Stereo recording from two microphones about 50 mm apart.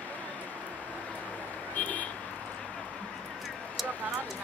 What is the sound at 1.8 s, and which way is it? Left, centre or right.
Vehicle, left.